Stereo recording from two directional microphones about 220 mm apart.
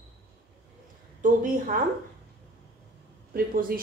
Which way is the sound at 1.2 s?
40° right (ahead or behind).